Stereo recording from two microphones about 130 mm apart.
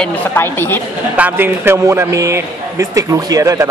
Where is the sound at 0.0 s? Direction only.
15° left (ahead or behind).